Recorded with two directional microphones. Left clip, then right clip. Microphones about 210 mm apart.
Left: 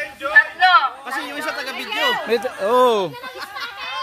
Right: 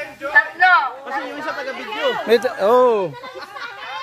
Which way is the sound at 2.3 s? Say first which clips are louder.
Right 5 dB; 10° right (ahead or behind).